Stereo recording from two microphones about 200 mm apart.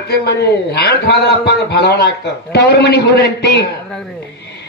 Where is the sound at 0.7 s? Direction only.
55° left (ahead or behind).